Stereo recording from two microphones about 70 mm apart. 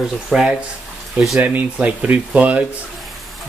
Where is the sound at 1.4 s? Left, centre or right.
Right.